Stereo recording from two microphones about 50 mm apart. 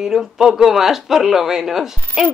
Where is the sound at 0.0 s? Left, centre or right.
Centre.